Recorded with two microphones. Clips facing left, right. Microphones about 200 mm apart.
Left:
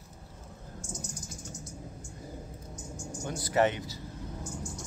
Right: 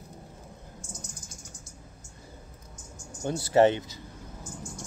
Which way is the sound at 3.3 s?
30° right (ahead or behind).